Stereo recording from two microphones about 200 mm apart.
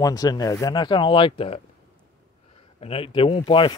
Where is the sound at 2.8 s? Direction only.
30° left (ahead or behind).